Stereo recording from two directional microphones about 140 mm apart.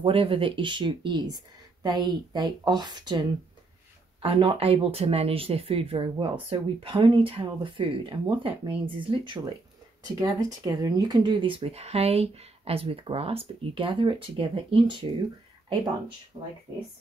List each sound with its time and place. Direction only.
0.0 s speech: 40° right (ahead or behind)